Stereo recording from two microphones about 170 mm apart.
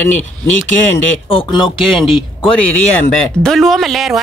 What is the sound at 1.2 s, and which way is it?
Speech, 30° left (ahead or behind).